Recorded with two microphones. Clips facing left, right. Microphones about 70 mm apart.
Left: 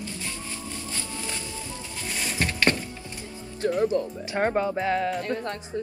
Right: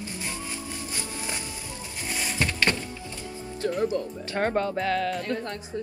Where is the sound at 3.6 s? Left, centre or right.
Left.